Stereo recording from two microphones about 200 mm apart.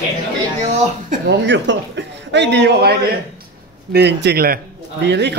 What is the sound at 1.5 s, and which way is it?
A man's voice, 65° right (ahead or behind).